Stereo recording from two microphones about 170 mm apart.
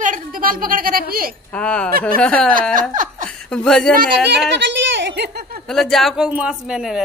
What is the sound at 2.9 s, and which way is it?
Laughter, 50° right (ahead or behind).